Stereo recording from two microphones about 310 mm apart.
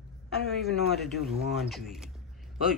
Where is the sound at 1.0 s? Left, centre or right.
Centre.